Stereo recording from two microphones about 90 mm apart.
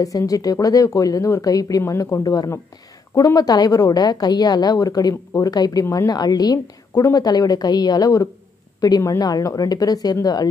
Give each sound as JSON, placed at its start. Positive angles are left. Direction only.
{"t": 0.3, "sound": "a woman's voice", "side_deg": 40}